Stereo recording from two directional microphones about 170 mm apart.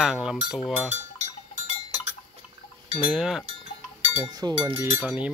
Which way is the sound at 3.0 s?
5° right (ahead or behind).